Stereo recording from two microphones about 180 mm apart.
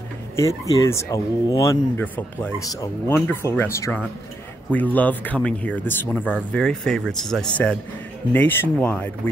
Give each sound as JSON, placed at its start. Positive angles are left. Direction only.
{"t": 0.4, "sound": "speech", "side_deg": 15}